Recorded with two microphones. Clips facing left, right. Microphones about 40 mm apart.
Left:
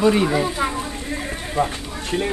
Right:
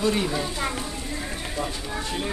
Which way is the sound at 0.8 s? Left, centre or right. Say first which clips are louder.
Left 4 dB; left.